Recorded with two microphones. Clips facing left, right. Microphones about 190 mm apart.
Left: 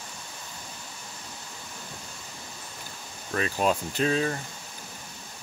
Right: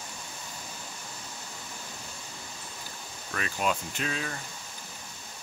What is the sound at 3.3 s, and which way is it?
Speech, 35° left (ahead or behind).